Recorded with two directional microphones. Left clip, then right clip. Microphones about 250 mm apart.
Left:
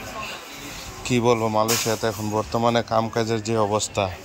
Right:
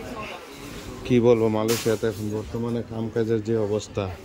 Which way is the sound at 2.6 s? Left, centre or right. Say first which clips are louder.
Left 11 dB; left.